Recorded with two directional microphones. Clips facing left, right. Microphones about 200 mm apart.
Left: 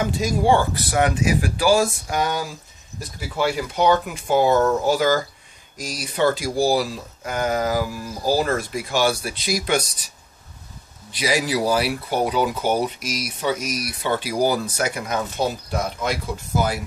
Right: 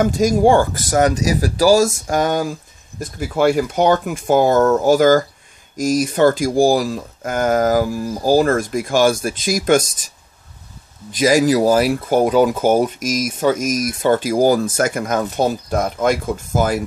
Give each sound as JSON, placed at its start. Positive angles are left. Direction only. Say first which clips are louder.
{"t": 0.0, "sound": "speech", "louder": "right 7 dB", "side_deg": -45}
{"t": 11.1, "sound": "speech", "louder": "right 9 dB", "side_deg": -45}